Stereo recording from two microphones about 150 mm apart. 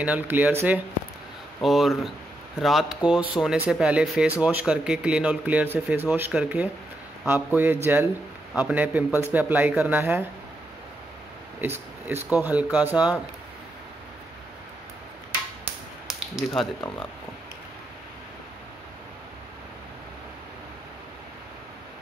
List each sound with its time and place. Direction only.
0.0 s speech: 10° right (ahead or behind)
1.6 s speech: centre (ahead or behind)
11.6 s a sound: 15° right (ahead or behind)
12.3 s speech: 10° right (ahead or behind)
16.4 s speech: centre (ahead or behind)